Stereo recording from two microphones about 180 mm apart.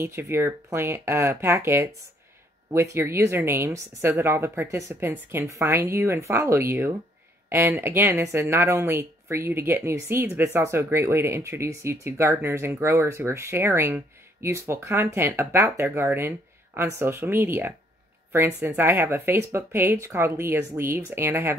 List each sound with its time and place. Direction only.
0.0 s speech: 15° right (ahead or behind)